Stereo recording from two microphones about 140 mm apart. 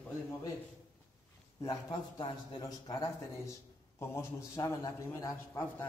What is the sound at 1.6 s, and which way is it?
A man's voice, 25° left (ahead or behind).